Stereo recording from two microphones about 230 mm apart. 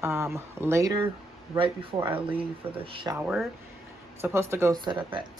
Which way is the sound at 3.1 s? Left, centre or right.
Centre.